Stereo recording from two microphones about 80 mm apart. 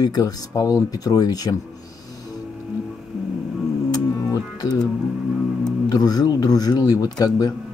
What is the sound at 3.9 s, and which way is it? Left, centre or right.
Music, left.